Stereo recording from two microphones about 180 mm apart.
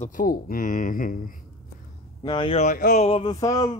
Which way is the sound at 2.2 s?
25° left (ahead or behind).